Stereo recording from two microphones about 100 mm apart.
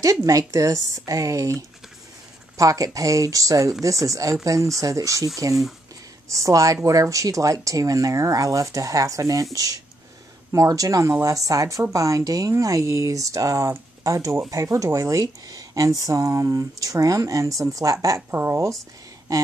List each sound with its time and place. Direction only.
0.0 s speech: 35° right (ahead or behind)